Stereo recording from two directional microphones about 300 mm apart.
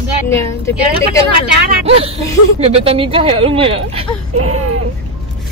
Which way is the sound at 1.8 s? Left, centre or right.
Centre.